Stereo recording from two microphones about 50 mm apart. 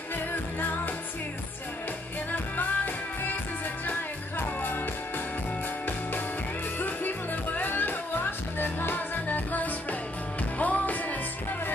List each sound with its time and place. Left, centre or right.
2.3 s music: left
6.8 s music: left